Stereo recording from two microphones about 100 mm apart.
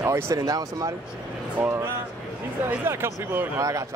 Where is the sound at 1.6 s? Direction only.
25° right (ahead or behind).